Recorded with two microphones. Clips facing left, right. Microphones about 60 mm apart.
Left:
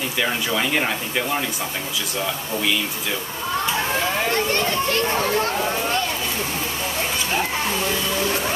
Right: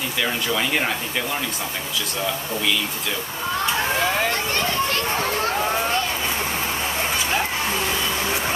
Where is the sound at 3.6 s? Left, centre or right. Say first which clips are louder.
Right 2 dB; centre.